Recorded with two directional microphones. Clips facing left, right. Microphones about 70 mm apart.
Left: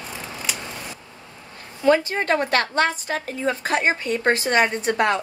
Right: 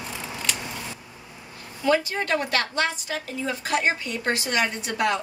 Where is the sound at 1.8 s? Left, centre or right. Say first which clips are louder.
Left 4 dB; left.